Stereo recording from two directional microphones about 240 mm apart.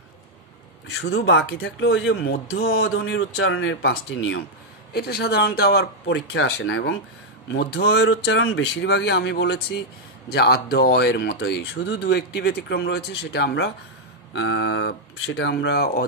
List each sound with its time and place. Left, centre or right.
0.8 s speech: left